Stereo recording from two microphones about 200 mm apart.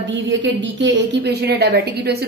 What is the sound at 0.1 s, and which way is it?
A woman's voice, 65° right (ahead or behind).